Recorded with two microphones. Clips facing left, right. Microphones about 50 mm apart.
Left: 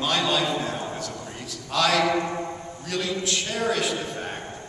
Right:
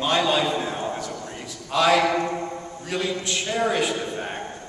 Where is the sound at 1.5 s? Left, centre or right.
Centre.